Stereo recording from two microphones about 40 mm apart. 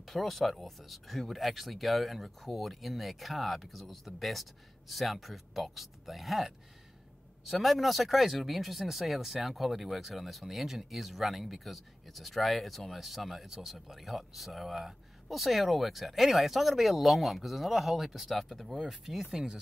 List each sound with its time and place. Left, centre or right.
0.0 s speech: centre
19.3 s speech: centre